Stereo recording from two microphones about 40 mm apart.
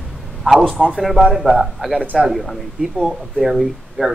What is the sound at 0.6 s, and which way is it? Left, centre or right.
Speech, right.